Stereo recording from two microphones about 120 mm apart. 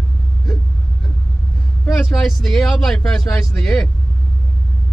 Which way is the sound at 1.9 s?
5° left (ahead or behind).